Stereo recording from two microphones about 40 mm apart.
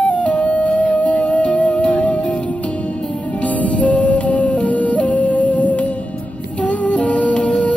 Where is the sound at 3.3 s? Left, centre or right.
Left.